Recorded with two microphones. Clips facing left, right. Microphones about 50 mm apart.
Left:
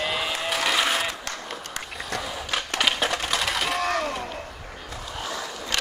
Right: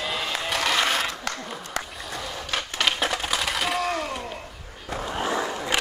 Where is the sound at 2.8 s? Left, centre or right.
Centre.